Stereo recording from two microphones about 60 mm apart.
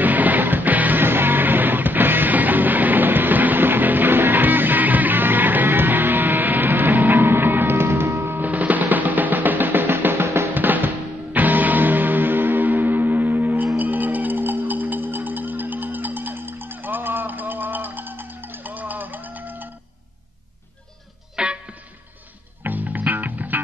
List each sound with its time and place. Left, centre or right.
0.0 s music: right
8.5 s music: right
10.5 s drum: right
11.3 s music: right
13.7 s music: right
21.4 s music: centre
22.6 s music: right